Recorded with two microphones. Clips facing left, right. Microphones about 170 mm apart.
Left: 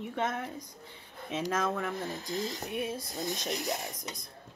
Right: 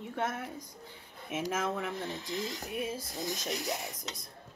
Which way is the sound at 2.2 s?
40° left (ahead or behind).